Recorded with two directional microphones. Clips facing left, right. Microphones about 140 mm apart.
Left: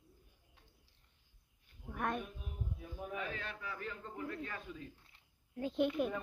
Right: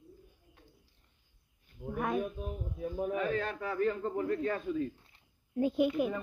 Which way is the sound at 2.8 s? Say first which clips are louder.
Right 11 dB; 45° right (ahead or behind).